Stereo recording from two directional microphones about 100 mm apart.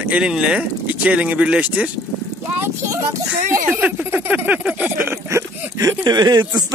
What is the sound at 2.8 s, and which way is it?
Speech, 30° right (ahead or behind).